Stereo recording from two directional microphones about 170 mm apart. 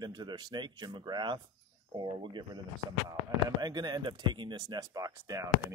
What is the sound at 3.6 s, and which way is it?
Speech, 25° right (ahead or behind).